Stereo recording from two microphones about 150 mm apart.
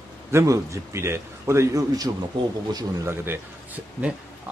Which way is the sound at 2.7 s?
15° right (ahead or behind).